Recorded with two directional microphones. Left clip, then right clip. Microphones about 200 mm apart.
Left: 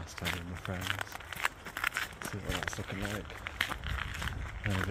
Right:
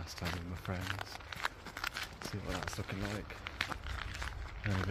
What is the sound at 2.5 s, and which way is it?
Speech, 5° left (ahead or behind).